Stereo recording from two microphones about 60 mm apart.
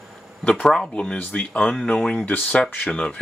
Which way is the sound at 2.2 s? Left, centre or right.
Left.